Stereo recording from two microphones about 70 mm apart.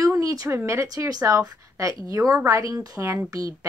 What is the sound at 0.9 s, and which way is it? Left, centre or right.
A woman's voice, right.